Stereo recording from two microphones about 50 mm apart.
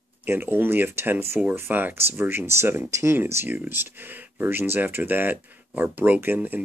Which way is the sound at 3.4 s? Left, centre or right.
Right.